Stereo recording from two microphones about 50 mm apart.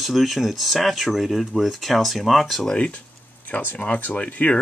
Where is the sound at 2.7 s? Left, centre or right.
Left.